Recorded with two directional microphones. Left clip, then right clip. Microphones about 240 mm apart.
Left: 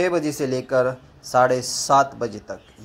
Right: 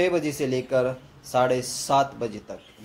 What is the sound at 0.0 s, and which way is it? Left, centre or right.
Speech, centre.